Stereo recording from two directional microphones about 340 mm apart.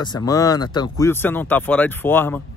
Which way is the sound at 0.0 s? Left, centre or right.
Centre.